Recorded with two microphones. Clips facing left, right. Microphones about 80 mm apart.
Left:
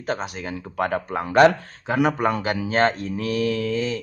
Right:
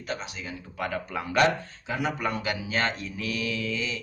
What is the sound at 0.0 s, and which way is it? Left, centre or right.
Speech, left.